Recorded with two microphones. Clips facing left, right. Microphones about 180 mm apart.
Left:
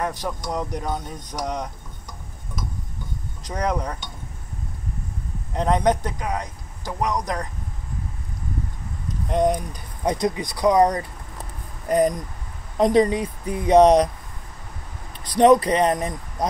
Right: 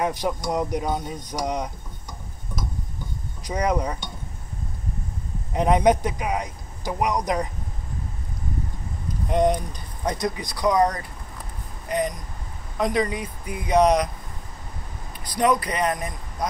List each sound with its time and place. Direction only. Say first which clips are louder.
0.0 s speech: right 3 dB; 15° right (ahead or behind)
3.4 s speech: right 2 dB; 5° right (ahead or behind)
5.5 s speech: right 2 dB; 10° right (ahead or behind)
9.3 s speech: even; centre (ahead or behind)
10.0 s speech: left 4 dB; 20° left (ahead or behind)
11.9 s speech: left 6 dB; 40° left (ahead or behind)
15.3 s speech: left 7 dB; 30° left (ahead or behind)